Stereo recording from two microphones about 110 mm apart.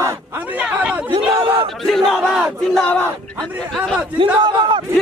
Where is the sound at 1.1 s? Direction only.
55° right (ahead or behind).